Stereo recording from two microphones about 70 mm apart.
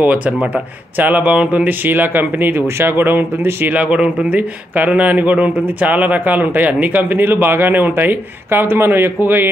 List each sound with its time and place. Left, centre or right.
0.0 s a man's voice: right
3.7 s a man's voice: centre